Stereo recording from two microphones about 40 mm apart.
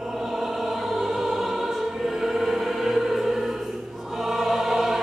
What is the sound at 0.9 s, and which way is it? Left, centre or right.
Music, centre.